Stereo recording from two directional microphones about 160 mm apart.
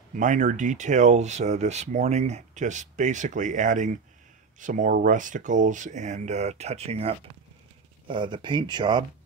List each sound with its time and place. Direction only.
0.1 s speech: 50° right (ahead or behind)
8.1 s speech: 30° right (ahead or behind)